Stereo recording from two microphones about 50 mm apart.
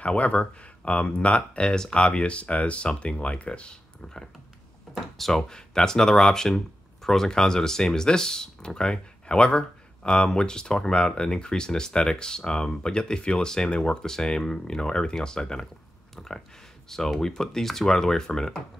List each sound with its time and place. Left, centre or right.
0.0 s speech: left
4.9 s speech: centre